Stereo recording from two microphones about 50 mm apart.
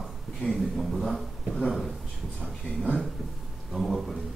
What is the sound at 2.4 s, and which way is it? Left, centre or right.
Speech, left.